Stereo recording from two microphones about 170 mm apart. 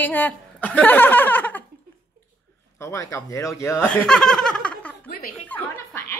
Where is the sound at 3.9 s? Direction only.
5° left (ahead or behind).